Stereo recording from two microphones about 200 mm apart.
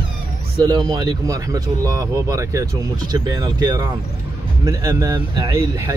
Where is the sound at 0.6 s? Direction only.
20° right (ahead or behind).